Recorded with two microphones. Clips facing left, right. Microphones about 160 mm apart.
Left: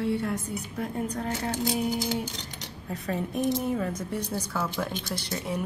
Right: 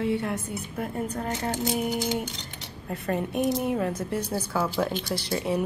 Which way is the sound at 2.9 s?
55° right (ahead or behind).